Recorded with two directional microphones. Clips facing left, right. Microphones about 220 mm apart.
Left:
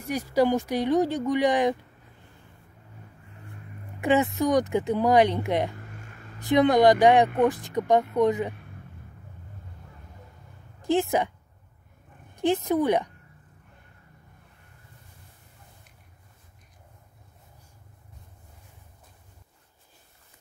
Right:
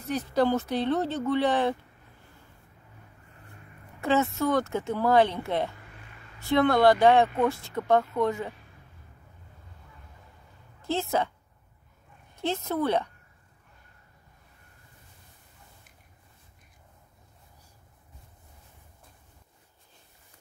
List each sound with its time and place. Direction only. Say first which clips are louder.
0.0 s speech: left 2 dB; 10° left (ahead or behind)
4.0 s speech: left 2 dB; 15° left (ahead or behind)
10.8 s a woman's voice: left 4 dB; 15° left (ahead or behind)
12.4 s speech: left 5 dB; 15° left (ahead or behind)